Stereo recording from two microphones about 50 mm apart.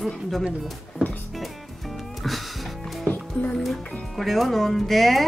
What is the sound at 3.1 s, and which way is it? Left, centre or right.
Music, left.